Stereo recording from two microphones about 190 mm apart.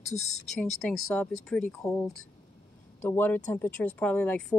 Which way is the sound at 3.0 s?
10° left (ahead or behind).